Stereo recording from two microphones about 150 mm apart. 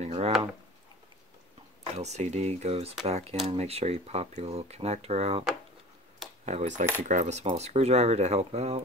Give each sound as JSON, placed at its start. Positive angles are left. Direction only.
{"t": 0.0, "sound": "a sound", "side_deg": -45}
{"t": 2.0, "sound": "speech", "side_deg": -50}
{"t": 6.4, "sound": "speech", "side_deg": -50}
{"t": 7.0, "sound": "cutlery", "side_deg": -55}
{"t": 7.4, "sound": "speech", "side_deg": -45}